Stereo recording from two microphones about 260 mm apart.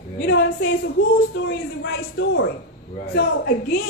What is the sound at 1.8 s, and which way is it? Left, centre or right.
Speech, left.